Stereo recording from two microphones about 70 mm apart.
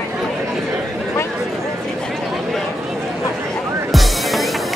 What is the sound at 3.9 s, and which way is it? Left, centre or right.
Music, centre.